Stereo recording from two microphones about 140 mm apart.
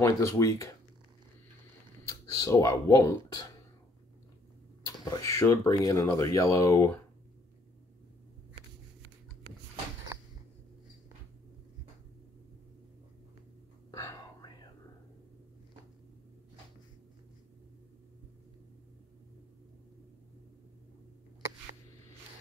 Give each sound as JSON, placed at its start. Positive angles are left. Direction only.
{"t": 0.0, "sound": "speech", "side_deg": 20}
{"t": 2.0, "sound": "speech", "side_deg": 25}
{"t": 4.8, "sound": "speech", "side_deg": 20}
{"t": 13.9, "sound": "whispering", "side_deg": 20}